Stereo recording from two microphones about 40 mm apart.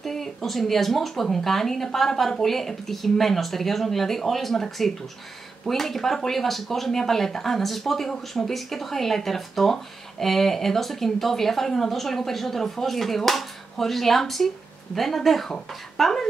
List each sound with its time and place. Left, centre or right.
0.0 s speech: centre